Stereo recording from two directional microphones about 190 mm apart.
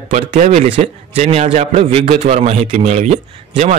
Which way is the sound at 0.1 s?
40° right (ahead or behind).